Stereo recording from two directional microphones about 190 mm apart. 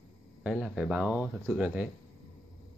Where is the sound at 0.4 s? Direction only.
5° right (ahead or behind).